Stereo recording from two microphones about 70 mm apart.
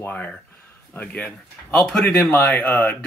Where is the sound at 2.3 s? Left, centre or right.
Left.